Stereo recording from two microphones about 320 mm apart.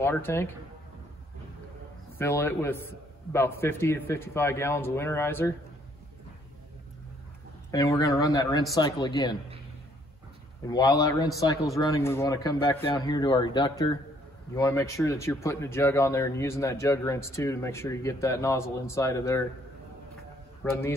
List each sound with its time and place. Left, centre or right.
0.0 s speech: centre
2.1 s speech: centre
7.7 s speech: centre
10.7 s speech: centre
20.6 s a man's voice: centre